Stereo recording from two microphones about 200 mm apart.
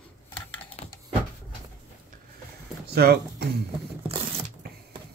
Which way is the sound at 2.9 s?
55° right (ahead or behind).